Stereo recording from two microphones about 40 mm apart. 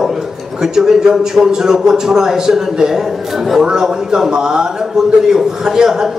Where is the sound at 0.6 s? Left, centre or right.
Centre.